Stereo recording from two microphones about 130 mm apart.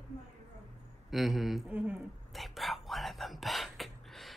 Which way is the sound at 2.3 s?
Centre (ahead or behind).